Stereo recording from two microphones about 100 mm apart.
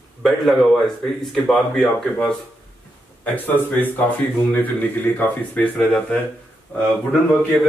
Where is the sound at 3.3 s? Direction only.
20° left (ahead or behind).